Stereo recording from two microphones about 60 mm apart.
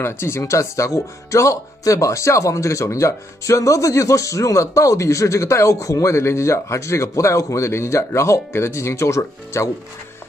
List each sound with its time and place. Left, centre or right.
0.0 s speech: left
0.4 s speech: left